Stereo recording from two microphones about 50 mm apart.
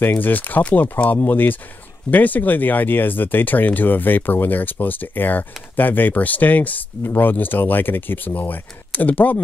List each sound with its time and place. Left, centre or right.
0.0 s speech: left
7.0 s speech: left